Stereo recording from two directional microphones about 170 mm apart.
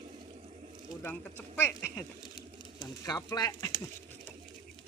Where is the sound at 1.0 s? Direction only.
10° left (ahead or behind).